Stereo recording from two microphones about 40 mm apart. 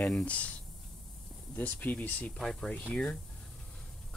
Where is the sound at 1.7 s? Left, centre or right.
Left.